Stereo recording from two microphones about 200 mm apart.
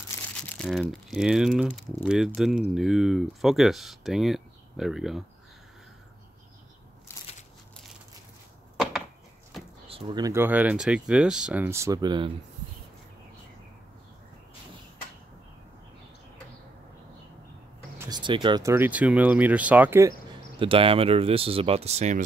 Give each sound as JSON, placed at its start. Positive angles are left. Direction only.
{"t": 0.6, "sound": "speech", "side_deg": 0}
{"t": 9.8, "sound": "speech", "side_deg": -25}
{"t": 17.9, "sound": "speech", "side_deg": -20}
{"t": 20.5, "sound": "speech", "side_deg": -25}